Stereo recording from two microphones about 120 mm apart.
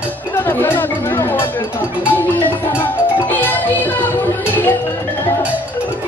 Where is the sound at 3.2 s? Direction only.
15° left (ahead or behind).